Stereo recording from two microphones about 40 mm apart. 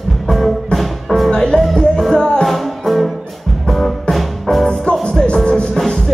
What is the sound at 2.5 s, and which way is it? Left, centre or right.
Music, centre.